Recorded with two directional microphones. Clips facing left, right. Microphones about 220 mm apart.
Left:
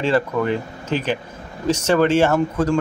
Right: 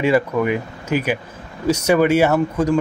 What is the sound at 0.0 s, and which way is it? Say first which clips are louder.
Speech: right 2 dB; 10° right (ahead or behind).